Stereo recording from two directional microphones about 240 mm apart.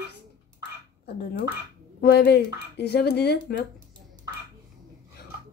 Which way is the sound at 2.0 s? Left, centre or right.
Left.